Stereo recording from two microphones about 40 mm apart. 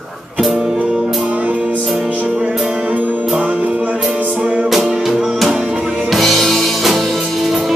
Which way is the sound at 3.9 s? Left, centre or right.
Right.